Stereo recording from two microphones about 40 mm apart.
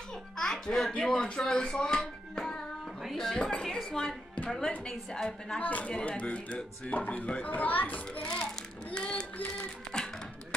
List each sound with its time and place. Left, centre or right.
0.4 s a woman's voice: centre
2.3 s child singing: centre
3.0 s speech: centre
3.3 s a child's voice: left
5.6 s speech: left
7.4 s a child's voice: left
8.2 s a child's voice: centre